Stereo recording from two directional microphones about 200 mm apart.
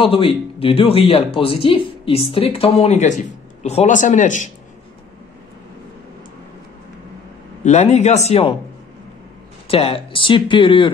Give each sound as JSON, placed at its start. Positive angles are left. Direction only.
{"t": 0.0, "sound": "a man's voice", "side_deg": 25}
{"t": 7.6, "sound": "a man's voice", "side_deg": 35}
{"t": 9.7, "sound": "speech", "side_deg": 30}